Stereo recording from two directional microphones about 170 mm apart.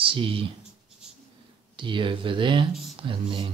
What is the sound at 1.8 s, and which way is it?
Speech, 30° right (ahead or behind).